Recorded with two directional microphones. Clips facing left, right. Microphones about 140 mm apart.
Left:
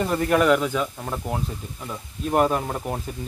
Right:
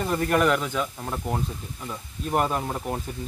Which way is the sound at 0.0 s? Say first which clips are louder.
Left 2 dB; centre (ahead or behind).